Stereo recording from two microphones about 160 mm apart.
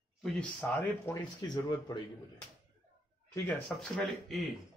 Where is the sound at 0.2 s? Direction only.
5° left (ahead or behind).